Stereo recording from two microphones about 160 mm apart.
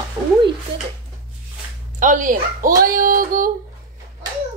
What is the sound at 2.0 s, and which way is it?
Child singing, 55° right (ahead or behind).